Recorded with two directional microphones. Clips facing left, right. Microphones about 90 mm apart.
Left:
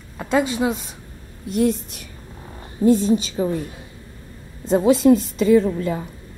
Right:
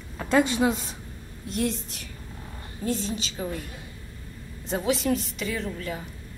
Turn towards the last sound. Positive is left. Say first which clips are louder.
# left 14 dB
turn(degrees=25)  # may be behind; listen again after turning